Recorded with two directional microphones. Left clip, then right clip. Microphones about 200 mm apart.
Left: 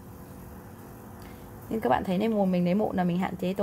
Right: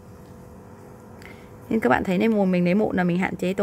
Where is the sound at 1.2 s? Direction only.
30° right (ahead or behind).